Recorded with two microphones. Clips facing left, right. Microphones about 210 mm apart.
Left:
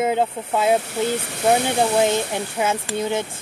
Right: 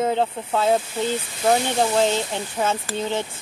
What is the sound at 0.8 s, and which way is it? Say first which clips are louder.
Speech: left 2 dB; 70° left (ahead or behind).